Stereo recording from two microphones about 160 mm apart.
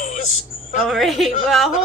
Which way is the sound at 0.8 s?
Centre (ahead or behind).